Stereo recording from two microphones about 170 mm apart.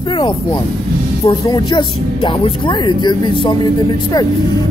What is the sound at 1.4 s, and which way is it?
Speech, 25° left (ahead or behind).